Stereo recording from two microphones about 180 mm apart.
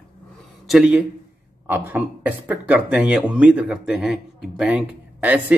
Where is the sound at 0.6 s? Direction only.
Centre (ahead or behind).